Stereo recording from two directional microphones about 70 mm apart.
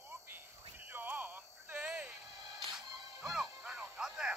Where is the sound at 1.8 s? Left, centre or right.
Centre.